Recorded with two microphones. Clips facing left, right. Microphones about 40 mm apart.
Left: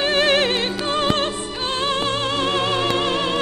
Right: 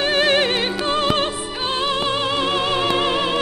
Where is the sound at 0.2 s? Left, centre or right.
Centre.